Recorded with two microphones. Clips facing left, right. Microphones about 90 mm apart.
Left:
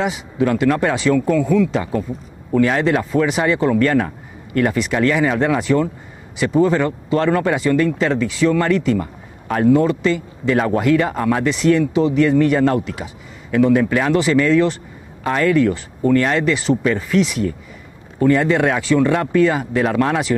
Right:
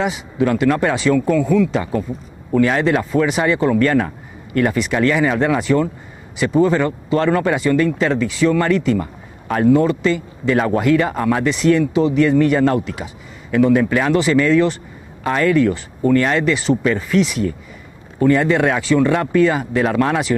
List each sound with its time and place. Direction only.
0.0 s speech: 25° right (ahead or behind)